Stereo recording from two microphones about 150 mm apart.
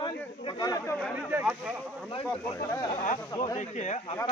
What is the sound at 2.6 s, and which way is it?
Speech, 20° left (ahead or behind).